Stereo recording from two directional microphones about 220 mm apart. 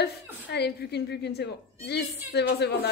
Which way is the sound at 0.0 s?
50° left (ahead or behind).